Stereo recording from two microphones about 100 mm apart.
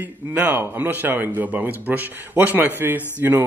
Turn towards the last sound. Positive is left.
turn(degrees=-20)  # may be behind; listen again after turning